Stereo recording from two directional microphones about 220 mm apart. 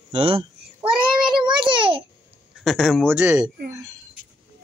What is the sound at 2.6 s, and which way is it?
Speech, centre (ahead or behind).